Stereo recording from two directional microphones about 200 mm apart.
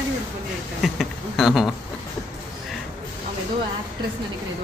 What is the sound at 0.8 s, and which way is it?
Speech, centre (ahead or behind).